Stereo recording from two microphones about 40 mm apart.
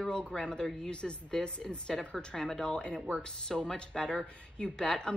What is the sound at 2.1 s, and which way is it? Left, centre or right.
Speech, centre.